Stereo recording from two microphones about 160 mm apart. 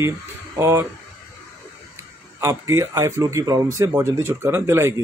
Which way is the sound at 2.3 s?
20° right (ahead or behind).